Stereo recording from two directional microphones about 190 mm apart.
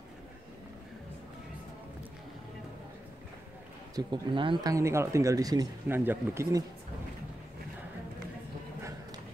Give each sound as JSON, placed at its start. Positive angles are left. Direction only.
{"t": 3.9, "sound": "speech", "side_deg": -25}